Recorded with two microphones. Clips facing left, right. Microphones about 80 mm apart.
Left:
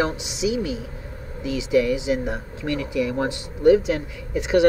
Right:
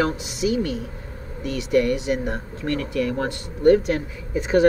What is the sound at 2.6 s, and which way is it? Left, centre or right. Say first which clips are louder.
Speech: even; right.